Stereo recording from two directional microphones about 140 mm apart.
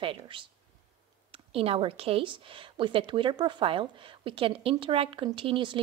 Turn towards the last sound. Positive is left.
turn(degrees=-40)  # may be behind; listen again after turning